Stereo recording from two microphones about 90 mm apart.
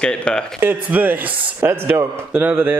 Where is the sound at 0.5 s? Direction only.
20° right (ahead or behind).